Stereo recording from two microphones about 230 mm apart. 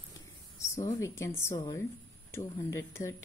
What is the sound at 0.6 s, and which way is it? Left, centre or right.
A woman's voice, centre.